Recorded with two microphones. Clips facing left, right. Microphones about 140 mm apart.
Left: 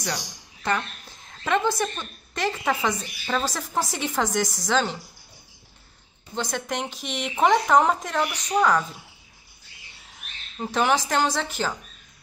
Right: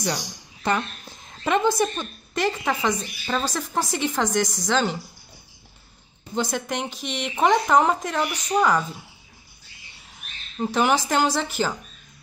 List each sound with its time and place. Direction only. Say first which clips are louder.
1.4 s a woman's voice: right 3 dB; 15° right (ahead or behind)
2.3 s a woman's voice: right 1 dB; centre (ahead or behind)
6.3 s a woman's voice: right 2 dB; 5° right (ahead or behind)
10.6 s a woman's voice: right 2 dB; 5° right (ahead or behind)